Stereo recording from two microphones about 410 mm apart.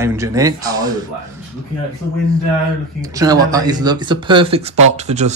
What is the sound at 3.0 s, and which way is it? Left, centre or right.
Speech, centre.